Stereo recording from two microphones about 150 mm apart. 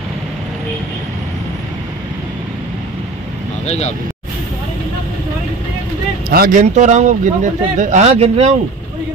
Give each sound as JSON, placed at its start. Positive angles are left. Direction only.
{"t": 3.6, "sound": "speech", "side_deg": 45}
{"t": 6.3, "sound": "speech", "side_deg": -85}
{"t": 6.6, "sound": "speech", "side_deg": -50}